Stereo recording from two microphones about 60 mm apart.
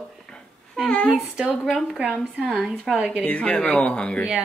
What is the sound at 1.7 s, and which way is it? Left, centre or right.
Speech, centre.